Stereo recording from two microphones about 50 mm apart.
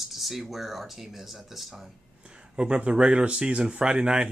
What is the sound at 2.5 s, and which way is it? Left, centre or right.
Speech, centre.